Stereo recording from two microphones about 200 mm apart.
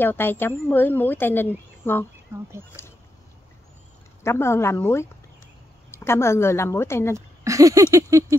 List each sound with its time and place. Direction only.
0.0 s a woman's voice: 10° left (ahead or behind)
4.2 s a woman's voice: 15° left (ahead or behind)
7.2 s speech: 15° right (ahead or behind)